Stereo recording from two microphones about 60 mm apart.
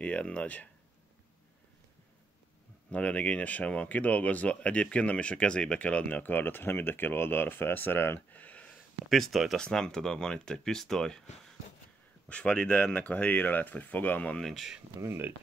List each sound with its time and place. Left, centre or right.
0.0 s speech: centre
2.9 s speech: left
9.1 s speech: centre
9.6 s speech: centre
12.3 s speech: centre
14.4 s speech: centre
15.0 s speech: right